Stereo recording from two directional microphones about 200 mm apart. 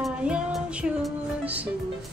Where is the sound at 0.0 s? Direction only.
5° right (ahead or behind).